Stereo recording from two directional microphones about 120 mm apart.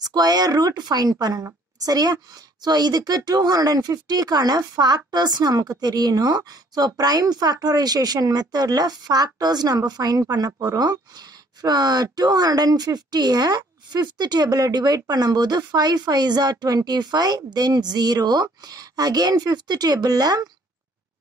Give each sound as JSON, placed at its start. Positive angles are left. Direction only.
{"t": 0.0, "sound": "a woman's voice", "side_deg": -35}